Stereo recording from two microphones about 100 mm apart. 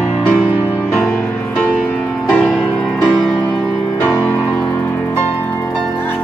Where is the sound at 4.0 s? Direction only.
15° left (ahead or behind).